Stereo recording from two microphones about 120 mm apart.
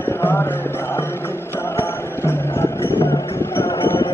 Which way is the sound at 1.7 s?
20° left (ahead or behind).